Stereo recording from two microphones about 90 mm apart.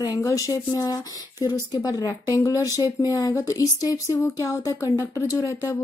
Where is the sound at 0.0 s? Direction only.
40° left (ahead or behind).